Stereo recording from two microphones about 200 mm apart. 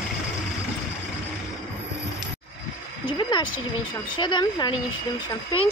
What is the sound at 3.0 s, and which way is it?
Speech, 20° left (ahead or behind).